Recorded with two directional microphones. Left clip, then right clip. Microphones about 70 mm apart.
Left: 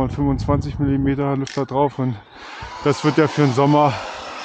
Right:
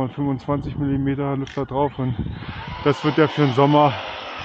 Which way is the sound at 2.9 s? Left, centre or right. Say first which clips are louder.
Left 1 dB; left.